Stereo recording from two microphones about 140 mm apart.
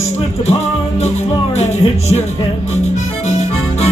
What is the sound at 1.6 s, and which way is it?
Speech, 50° left (ahead or behind).